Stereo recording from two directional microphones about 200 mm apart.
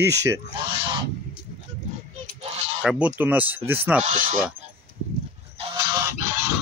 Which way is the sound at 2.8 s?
5° right (ahead or behind).